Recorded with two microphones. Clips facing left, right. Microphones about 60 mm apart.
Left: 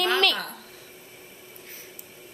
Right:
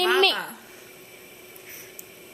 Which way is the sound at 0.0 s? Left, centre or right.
Centre.